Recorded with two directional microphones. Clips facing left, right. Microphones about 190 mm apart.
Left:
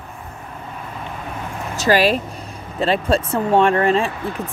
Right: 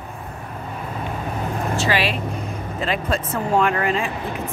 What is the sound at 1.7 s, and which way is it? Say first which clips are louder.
Speech: left 8 dB; 40° left (ahead or behind).